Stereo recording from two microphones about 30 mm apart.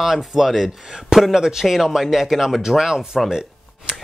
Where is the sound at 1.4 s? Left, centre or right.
Centre.